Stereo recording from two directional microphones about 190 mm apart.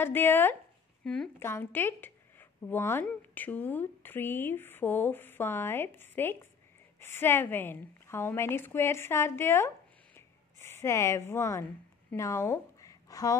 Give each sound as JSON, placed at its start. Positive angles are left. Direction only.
{"t": 0.0, "sound": "speech", "side_deg": 10}
{"t": 10.1, "sound": "a sound", "side_deg": 15}
{"t": 12.1, "sound": "a woman's voice", "side_deg": 15}